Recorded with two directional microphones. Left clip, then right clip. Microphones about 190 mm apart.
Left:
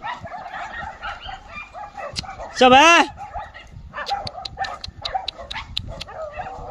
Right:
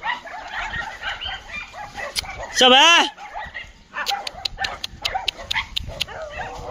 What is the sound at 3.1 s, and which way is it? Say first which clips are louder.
Dog: right 1 dB; 70° left (ahead or behind).